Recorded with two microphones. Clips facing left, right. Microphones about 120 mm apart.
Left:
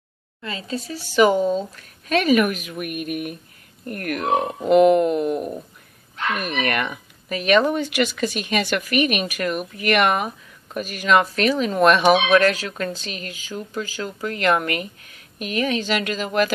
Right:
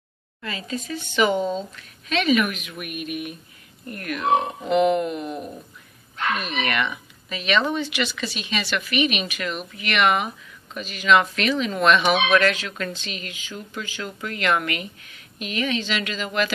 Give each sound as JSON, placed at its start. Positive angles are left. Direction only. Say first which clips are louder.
{"t": 0.4, "sound": "speech", "louder": "left 2 dB", "side_deg": 30}
{"t": 1.4, "sound": "speech", "louder": "left 4 dB", "side_deg": 5}
{"t": 1.8, "sound": "speech", "louder": "left 4 dB", "side_deg": 45}
{"t": 6.4, "sound": "speech", "louder": "left 2 dB", "side_deg": 50}